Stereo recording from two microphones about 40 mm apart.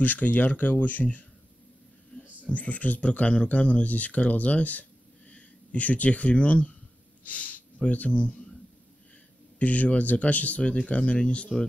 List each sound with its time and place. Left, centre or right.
0.0 s speech: left
2.5 s speech: left
3.1 s speech: left
9.6 s speech: left